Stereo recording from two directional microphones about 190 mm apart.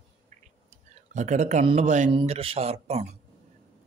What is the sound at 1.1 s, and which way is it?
Speech, 40° right (ahead or behind).